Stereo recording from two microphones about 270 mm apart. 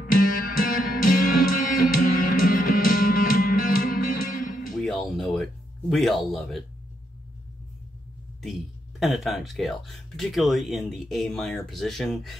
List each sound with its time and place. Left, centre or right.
0.1 s music: left
4.7 s a sound: centre
9.0 s speech: centre